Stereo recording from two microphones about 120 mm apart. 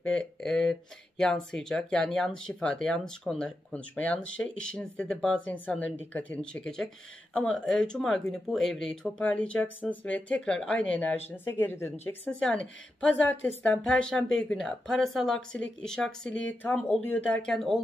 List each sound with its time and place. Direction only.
0.1 s speech: 5° left (ahead or behind)